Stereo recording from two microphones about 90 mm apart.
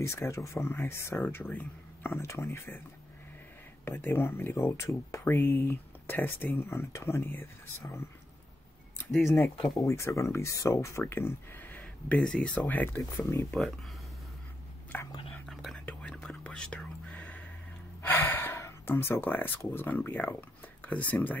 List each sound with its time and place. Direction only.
0.0 s speech: 30° left (ahead or behind)
3.8 s speech: 25° left (ahead or behind)
9.8 s speech: 35° left (ahead or behind)
11.8 s speech: 10° left (ahead or behind)
13.5 s speech: centre (ahead or behind)
14.9 s speech: 20° left (ahead or behind)
15.4 s whispering: centre (ahead or behind)
15.8 s whispering: 15° left (ahead or behind)
18.0 s gasp: 25° left (ahead or behind)
19.6 s speech: 25° left (ahead or behind)